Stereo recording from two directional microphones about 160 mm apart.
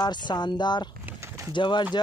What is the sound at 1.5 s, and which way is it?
Speech, 30° left (ahead or behind).